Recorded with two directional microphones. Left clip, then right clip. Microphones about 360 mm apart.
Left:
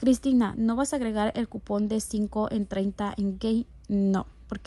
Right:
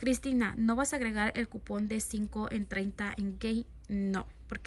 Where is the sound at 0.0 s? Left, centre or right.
Centre.